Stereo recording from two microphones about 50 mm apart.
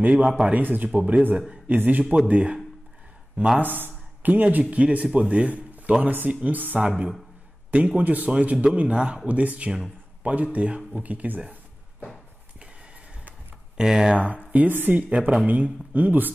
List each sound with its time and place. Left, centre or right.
0.0 s a man's voice: right
3.5 s a man's voice: right
6.8 s speech: right
9.7 s speech: centre
10.3 s a man's voice: right
13.7 s speech: centre
14.1 s a man's voice: right
15.0 s a man's voice: right